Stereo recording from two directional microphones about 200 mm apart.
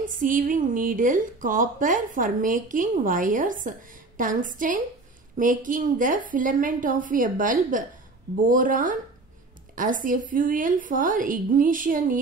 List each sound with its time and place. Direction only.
0.0 s a woman's voice: 45° right (ahead or behind)